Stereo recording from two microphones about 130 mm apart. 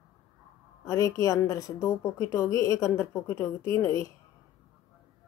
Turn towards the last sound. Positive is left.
turn(degrees=25)  # may be behind; listen again after turning